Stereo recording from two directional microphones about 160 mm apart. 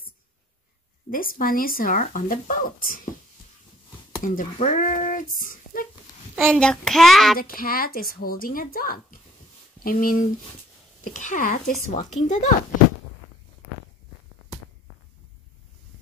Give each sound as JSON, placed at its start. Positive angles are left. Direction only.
{"t": 1.1, "sound": "speech", "side_deg": 60}
{"t": 4.2, "sound": "speech", "side_deg": 50}
{"t": 6.3, "sound": "a child's voice", "side_deg": 5}
{"t": 7.3, "sound": "speech", "side_deg": 65}